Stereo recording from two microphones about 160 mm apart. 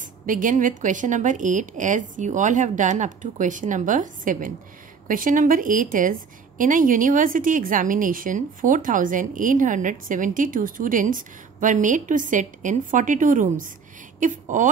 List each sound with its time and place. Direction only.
0.0 s a woman's voice: 55° right (ahead or behind)